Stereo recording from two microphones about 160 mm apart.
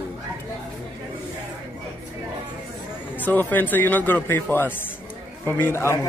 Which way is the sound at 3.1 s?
10° left (ahead or behind).